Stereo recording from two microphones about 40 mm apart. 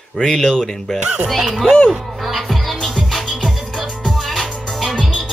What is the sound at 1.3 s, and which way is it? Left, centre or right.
Speech, centre.